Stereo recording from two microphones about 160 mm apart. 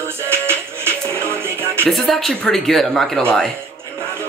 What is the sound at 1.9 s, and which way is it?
Speech, centre (ahead or behind).